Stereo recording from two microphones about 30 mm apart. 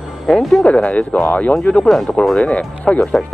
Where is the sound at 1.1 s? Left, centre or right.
Left.